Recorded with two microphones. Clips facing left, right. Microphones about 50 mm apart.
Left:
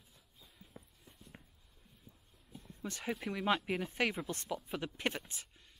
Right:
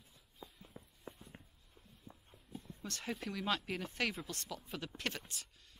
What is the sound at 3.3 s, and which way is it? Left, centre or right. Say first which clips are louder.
Speech: left 5 dB; left.